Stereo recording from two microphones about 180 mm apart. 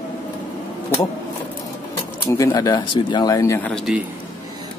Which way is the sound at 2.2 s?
20° left (ahead or behind).